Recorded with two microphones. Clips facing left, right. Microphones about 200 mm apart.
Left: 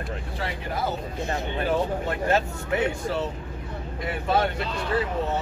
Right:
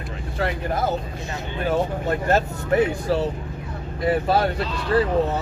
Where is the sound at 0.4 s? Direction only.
45° right (ahead or behind).